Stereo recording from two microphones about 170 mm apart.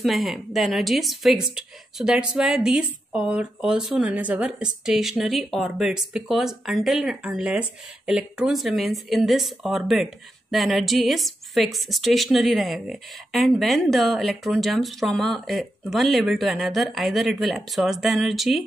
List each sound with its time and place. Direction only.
0.0 s a woman's voice: centre (ahead or behind)